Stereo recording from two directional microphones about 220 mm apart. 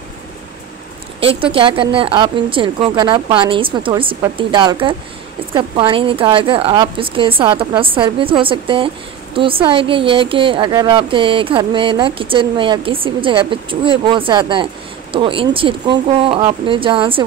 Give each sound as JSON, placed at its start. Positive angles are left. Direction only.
{"t": 1.2, "sound": "a woman's voice", "side_deg": -25}